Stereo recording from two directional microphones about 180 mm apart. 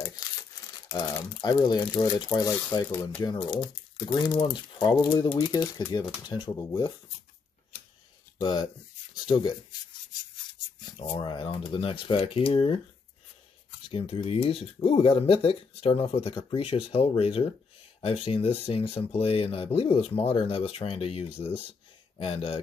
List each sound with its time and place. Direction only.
0.0 s speech: 20° left (ahead or behind)
8.4 s speech: 25° left (ahead or behind)
13.8 s speech: 30° left (ahead or behind)